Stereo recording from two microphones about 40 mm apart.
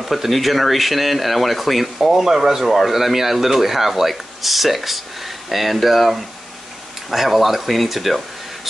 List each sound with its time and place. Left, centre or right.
0.0 s speech: centre